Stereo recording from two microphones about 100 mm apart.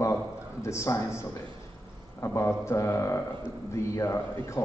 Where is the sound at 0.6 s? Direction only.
30° left (ahead or behind).